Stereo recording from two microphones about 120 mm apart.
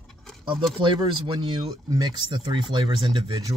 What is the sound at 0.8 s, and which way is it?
Speech, 45° right (ahead or behind).